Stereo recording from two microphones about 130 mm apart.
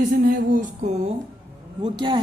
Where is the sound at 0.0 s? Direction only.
90° right.